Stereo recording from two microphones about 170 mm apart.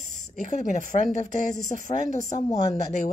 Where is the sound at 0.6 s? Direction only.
45° left (ahead or behind).